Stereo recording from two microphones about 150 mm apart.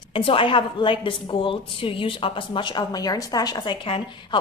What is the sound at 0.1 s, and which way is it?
A woman's voice, 35° left (ahead or behind).